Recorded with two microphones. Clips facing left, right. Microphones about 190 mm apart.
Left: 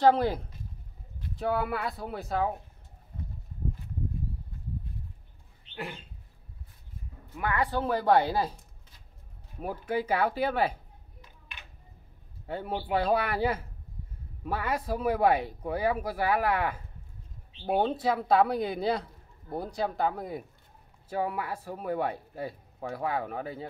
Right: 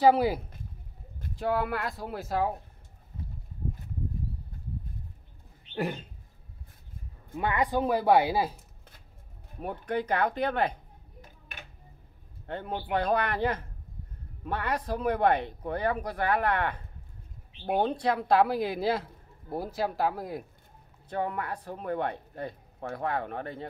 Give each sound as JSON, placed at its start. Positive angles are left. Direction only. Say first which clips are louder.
{"t": 0.0, "sound": "speech", "louder": "right 1 dB", "side_deg": -10}
{"t": 5.8, "sound": "bird", "louder": "right 7 dB", "side_deg": -40}
{"t": 7.3, "sound": "speech", "louder": "right 2 dB", "side_deg": -20}
{"t": 9.6, "sound": "speech", "louder": "even", "side_deg": 5}
{"t": 12.4, "sound": "speech", "louder": "left 1 dB", "side_deg": 5}